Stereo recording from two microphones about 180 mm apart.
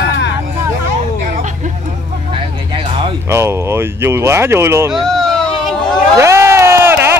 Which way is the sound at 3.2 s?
15° right (ahead or behind).